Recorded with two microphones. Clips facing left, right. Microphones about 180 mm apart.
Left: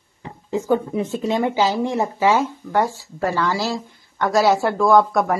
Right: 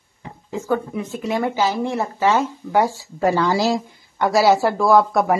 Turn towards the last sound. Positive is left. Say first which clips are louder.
# even
turn(degrees=0)  # may be behind; listen again after turning